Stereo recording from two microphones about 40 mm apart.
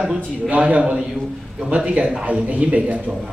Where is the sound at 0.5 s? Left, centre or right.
Right.